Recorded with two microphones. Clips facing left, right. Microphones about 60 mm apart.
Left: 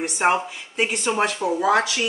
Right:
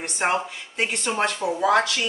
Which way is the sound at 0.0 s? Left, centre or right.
Centre.